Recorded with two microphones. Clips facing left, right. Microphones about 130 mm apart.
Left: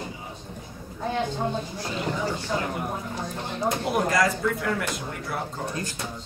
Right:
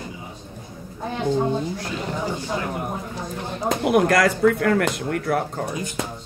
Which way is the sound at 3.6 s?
65° right (ahead or behind).